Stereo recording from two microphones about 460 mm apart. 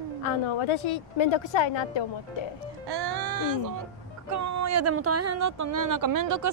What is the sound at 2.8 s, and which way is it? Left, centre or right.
Speech, right.